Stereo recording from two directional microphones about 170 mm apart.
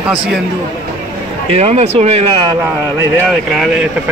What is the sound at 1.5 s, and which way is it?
Speech, 40° right (ahead or behind).